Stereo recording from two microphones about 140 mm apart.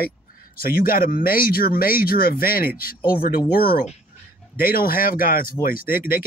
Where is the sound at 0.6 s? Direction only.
90° left.